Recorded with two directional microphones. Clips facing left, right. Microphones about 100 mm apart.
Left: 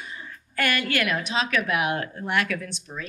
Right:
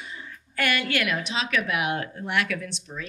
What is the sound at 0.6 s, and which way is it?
A woman's voice, 45° left (ahead or behind).